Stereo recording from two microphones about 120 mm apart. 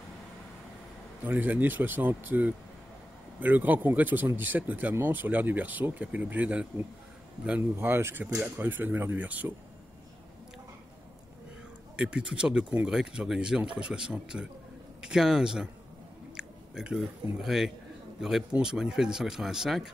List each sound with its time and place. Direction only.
1.2 s speech: 15° right (ahead or behind)
7.7 s speech: 20° right (ahead or behind)
12.0 s speech: 5° right (ahead or behind)